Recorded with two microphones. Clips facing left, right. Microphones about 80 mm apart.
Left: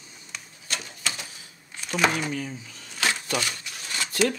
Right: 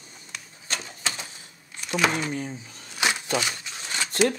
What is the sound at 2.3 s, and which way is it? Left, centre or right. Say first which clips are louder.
Speech: even; right.